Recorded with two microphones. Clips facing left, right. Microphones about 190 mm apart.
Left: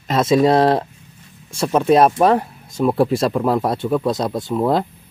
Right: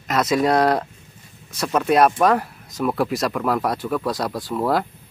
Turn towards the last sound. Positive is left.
turn(degrees=20)  # may be behind; listen again after turning